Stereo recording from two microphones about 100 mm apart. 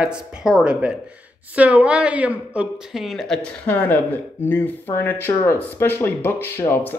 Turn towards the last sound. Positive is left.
turn(degrees=20)  # may be behind; listen again after turning